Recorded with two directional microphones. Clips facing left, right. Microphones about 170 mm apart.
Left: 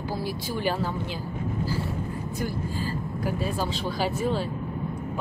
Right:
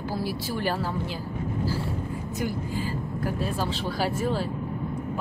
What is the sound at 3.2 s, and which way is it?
Speech, centre (ahead or behind).